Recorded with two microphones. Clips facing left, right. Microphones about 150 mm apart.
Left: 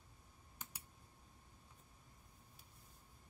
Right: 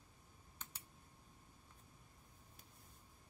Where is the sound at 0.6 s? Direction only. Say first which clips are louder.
Left 1 dB; 10° left (ahead or behind).